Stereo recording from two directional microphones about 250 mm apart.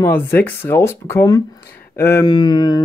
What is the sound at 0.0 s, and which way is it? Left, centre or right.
Speech, centre.